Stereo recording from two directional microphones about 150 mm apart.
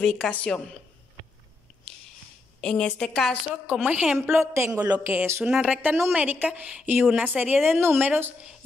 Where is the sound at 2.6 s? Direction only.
5° left (ahead or behind).